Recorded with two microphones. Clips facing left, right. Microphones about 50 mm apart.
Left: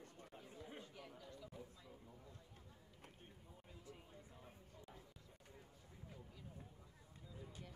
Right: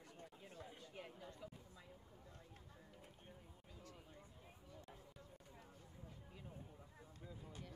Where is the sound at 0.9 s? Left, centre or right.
Right.